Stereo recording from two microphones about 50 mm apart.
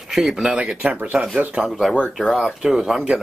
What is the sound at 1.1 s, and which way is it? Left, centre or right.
Speech, centre.